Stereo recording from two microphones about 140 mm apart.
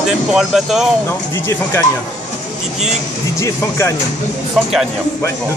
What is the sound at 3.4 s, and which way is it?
Speech, 20° left (ahead or behind).